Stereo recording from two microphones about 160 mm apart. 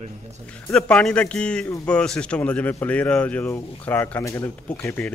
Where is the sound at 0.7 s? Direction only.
5° left (ahead or behind).